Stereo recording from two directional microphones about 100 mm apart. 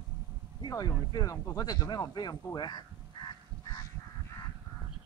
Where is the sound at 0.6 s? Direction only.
45° left (ahead or behind).